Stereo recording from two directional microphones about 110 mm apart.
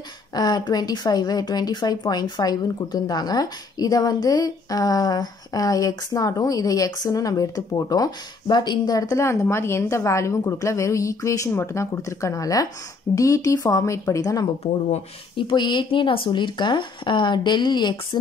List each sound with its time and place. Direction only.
0.3 s a woman's voice: 35° left (ahead or behind)
15.3 s speech: 45° left (ahead or behind)